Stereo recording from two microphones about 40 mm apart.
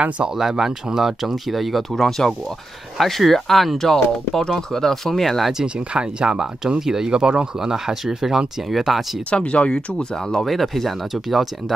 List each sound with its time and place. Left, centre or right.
0.4 s speech: centre
5.9 s speech: right
7.7 s speech: centre
9.3 s speech: left
9.7 s speech: centre
10.4 s speech: centre